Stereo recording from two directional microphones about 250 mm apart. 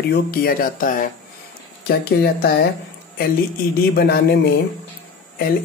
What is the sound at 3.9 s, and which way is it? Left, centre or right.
Speech, left.